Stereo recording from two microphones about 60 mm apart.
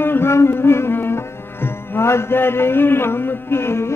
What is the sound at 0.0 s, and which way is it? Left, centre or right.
Music, left.